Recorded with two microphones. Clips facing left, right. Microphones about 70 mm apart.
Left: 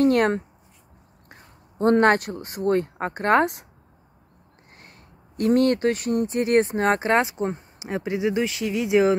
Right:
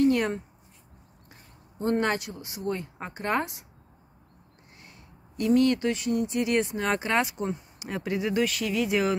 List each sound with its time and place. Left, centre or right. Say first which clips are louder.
0.0 s a sound: left 4 dB; left
1.3 s speech: left 5 dB; left
4.6 s speech: left 3 dB; left
7.8 s speech: left 5 dB; left